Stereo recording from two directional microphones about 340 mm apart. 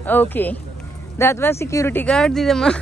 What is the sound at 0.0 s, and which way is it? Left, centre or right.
Speech, centre.